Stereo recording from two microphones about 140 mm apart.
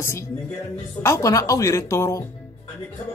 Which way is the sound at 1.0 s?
20° left (ahead or behind).